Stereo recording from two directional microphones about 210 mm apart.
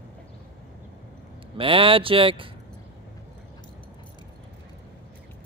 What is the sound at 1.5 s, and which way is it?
Speech, 25° right (ahead or behind).